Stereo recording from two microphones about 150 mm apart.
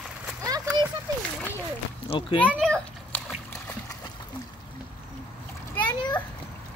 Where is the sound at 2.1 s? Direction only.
35° left (ahead or behind).